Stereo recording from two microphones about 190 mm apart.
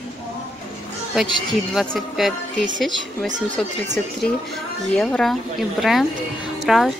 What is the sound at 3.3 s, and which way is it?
Speech, 40° right (ahead or behind).